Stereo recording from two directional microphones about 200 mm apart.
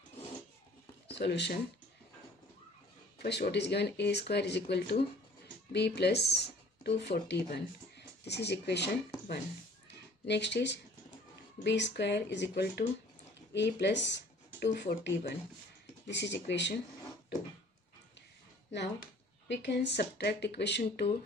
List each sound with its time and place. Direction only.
1.0 s speech: 60° left (ahead or behind)
3.2 s speech: 55° left (ahead or behind)
18.7 s speech: 55° left (ahead or behind)